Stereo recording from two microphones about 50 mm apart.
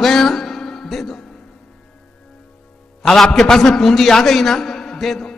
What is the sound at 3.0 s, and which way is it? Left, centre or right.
A man's voice, centre.